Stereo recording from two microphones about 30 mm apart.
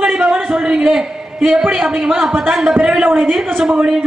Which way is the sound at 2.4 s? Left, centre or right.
Right.